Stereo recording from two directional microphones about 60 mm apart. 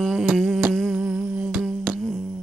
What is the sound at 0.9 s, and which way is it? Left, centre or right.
Humming, centre.